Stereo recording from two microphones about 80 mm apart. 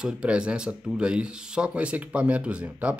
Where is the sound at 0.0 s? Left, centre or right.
Centre.